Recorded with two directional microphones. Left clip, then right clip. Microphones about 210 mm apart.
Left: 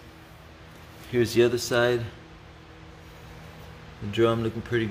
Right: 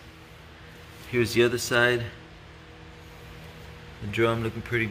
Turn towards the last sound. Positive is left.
turn(degrees=25)  # may be behind; listen again after turning